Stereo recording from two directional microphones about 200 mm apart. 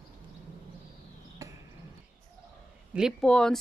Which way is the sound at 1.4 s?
15° right (ahead or behind).